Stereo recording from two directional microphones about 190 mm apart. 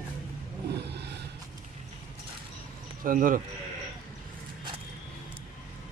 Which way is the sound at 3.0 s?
45° right (ahead or behind).